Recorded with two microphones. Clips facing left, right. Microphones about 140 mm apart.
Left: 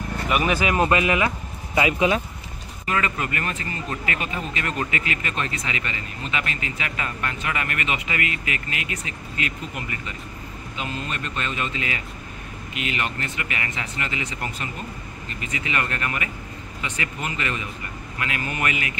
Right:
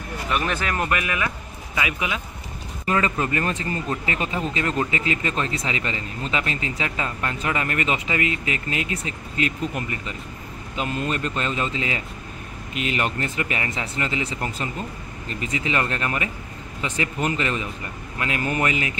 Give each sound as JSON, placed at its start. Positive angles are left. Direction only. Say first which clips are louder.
{"t": 0.3, "sound": "speech", "louder": "left 3 dB", "side_deg": 10}
{"t": 2.9, "sound": "speech", "louder": "right 3 dB", "side_deg": -30}
{"t": 10.8, "sound": "speech", "louder": "right 5 dB", "side_deg": -40}
{"t": 12.7, "sound": "speech", "louder": "right 3 dB", "side_deg": -40}